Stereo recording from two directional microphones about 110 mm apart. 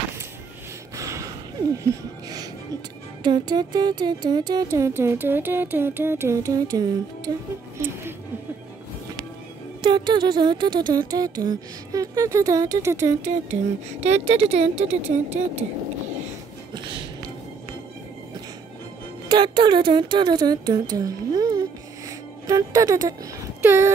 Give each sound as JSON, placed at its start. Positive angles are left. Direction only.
{"t": 0.9, "sound": "a sound", "side_deg": -30}
{"t": 1.8, "sound": "music", "side_deg": -30}
{"t": 3.3, "sound": "speech", "side_deg": -40}
{"t": 4.6, "sound": "music", "side_deg": -25}
{"t": 9.8, "sound": "speech", "side_deg": -45}
{"t": 14.0, "sound": "speech", "side_deg": -85}
{"t": 19.2, "sound": "speech", "side_deg": -45}